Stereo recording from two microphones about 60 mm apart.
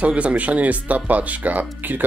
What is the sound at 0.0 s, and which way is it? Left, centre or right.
Speech, right.